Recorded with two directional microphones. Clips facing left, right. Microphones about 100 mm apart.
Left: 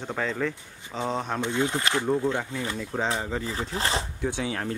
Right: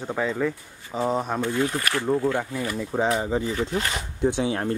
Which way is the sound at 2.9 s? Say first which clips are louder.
Right 5 dB; 15° right (ahead or behind).